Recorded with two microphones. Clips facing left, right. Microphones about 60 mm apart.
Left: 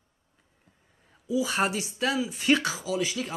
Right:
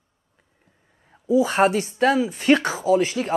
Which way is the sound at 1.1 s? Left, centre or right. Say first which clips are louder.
Right 8 dB; right.